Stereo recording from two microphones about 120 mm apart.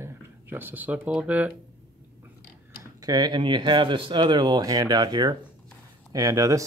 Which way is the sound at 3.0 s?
35° right (ahead or behind).